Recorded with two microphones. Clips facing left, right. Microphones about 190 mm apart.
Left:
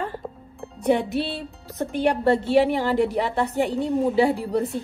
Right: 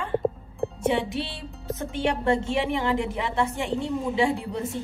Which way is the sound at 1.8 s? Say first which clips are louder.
Left 5 dB; 35° left (ahead or behind).